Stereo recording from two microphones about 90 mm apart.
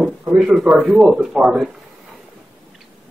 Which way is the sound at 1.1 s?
5° right (ahead or behind).